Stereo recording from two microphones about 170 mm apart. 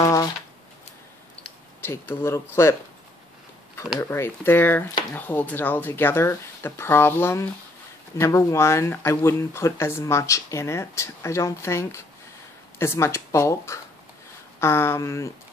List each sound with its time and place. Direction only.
0.0 s shuffling cards: 20° left (ahead or behind)
1.8 s speech: 15° left (ahead or behind)
4.0 s speech: 15° left (ahead or behind)